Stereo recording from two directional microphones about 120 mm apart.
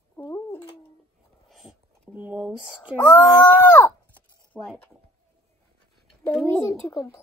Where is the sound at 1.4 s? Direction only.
Centre (ahead or behind).